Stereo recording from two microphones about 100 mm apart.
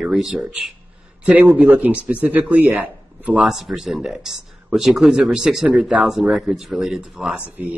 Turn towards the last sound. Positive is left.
turn(degrees=-15)  # may be behind; listen again after turning